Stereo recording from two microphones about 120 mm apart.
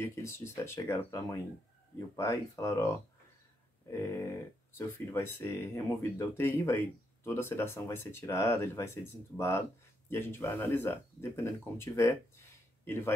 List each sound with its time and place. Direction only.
0.0 s speech: 25° left (ahead or behind)
4.7 s speech: 20° left (ahead or behind)